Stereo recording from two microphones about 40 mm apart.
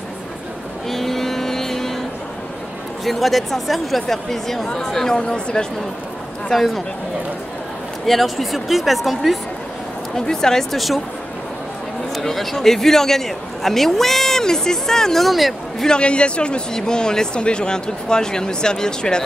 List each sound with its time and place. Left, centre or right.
0.8 s vehicle: centre
3.1 s a woman's voice: centre
5.3 s a man's voice: left
6.5 s a woman's voice: centre
8.1 s a woman's voice: centre
10.1 s a man's voice: centre
12.2 s a man's voice: centre
15.2 s a woman's voice: centre
16.0 s a man's voice: left